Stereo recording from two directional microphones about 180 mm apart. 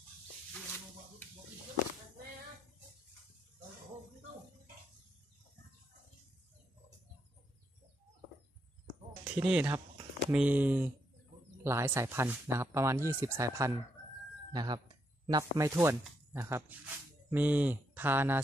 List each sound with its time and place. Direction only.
9.2 s speech: 10° right (ahead or behind)